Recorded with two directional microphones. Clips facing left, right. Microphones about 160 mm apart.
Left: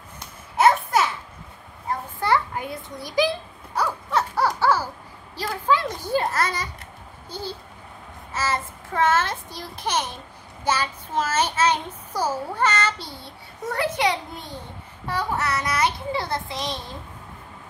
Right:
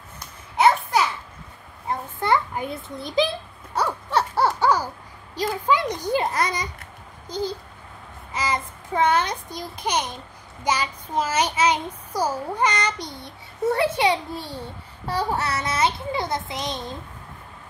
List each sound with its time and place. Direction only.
0.6 s babbling: centre (ahead or behind)
1.9 s a sound: 20° right (ahead or behind)
7.2 s a child's voice: 15° right (ahead or behind)